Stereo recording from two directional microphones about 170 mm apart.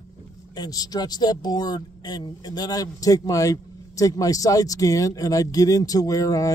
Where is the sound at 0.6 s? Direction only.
20° left (ahead or behind).